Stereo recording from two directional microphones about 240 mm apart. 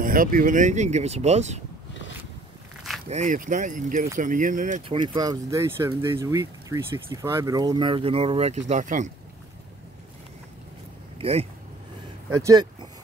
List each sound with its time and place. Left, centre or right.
0.0 s speech: right
3.1 s speech: right
4.9 s speech: centre
11.1 s speech: right
12.4 s speech: centre